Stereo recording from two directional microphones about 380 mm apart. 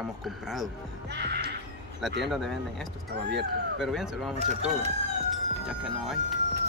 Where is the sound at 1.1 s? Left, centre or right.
Right.